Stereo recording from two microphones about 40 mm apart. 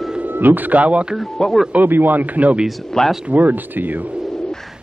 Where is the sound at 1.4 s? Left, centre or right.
Centre.